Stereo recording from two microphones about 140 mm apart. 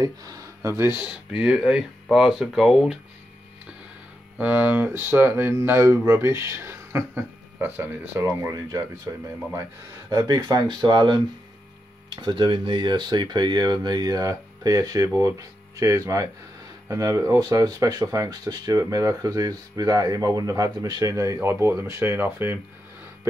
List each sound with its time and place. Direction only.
0.0 s speech: 25° right (ahead or behind); by 3.0 s 5° right (ahead or behind)
4.4 s speech: 10° right (ahead or behind); by 11.1 s 30° right (ahead or behind)
12.2 s speech: 35° right (ahead or behind); by 22.6 s 15° right (ahead or behind)